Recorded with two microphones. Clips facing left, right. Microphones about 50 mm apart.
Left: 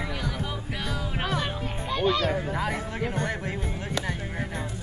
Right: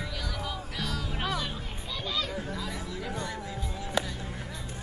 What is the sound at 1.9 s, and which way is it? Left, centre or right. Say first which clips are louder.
Music: left 9 dB; left.